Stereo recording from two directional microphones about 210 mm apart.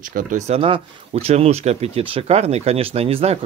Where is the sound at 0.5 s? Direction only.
25° right (ahead or behind).